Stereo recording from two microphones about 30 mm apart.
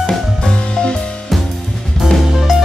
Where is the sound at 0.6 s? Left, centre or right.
Left.